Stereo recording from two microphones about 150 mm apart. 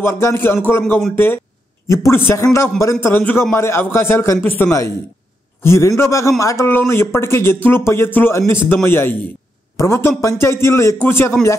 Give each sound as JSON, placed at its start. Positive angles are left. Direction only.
{"t": 0.0, "sound": "a man's voice", "side_deg": 15}